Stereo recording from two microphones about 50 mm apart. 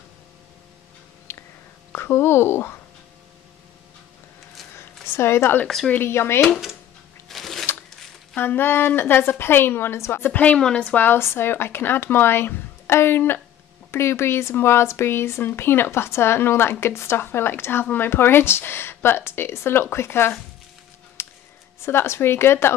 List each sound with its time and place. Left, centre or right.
1.3 s a sound: left
1.9 s speech: left
5.0 s speech: left
6.4 s speech: centre
7.2 s a sound: centre
8.4 s speech: left
10.2 s a woman's voice: left
10.5 s a woman's voice: centre
11.1 s speech: left
21.2 s a sound: left
21.8 s speech: left